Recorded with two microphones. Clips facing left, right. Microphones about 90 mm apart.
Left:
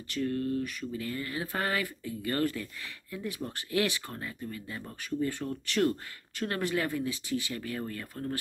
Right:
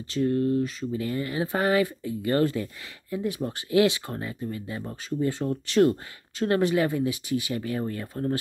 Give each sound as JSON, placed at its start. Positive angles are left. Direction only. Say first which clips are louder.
{"t": 0.1, "sound": "speech", "louder": "right 7 dB", "side_deg": -25}